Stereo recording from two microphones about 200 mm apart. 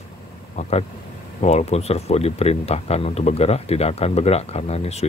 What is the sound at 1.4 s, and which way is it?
Speech, 30° left (ahead or behind).